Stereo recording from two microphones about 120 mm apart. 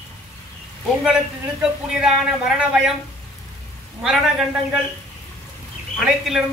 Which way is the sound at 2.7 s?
5° right (ahead or behind).